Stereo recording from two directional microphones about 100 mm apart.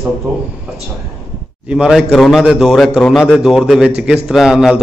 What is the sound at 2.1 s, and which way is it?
A man's voice, centre (ahead or behind).